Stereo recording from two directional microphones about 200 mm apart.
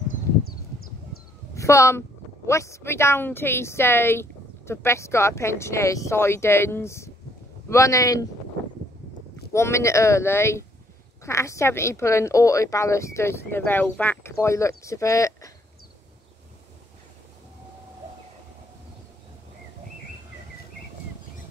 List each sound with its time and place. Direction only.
0.1 s a sound: 45° left (ahead or behind)
1.5 s speech: 15° left (ahead or behind)
9.5 s speech: 15° left (ahead or behind)